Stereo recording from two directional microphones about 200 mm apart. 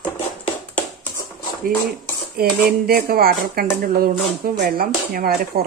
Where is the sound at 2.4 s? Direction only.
50° right (ahead or behind).